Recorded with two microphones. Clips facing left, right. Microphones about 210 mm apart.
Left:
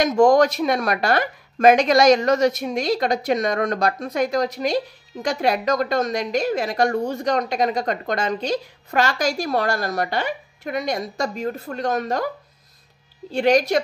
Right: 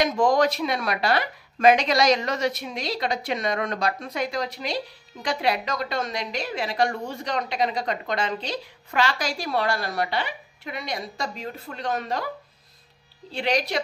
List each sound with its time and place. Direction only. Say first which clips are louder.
0.0 s speech: left 5 dB; 45° left (ahead or behind)
13.3 s speech: left 8 dB; 45° left (ahead or behind)